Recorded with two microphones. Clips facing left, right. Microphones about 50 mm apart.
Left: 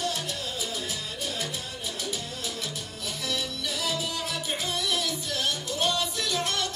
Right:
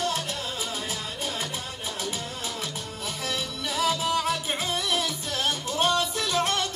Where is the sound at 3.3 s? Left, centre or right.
Right.